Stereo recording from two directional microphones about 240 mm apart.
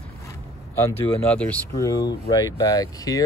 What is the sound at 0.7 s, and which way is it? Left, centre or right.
Speech, centre.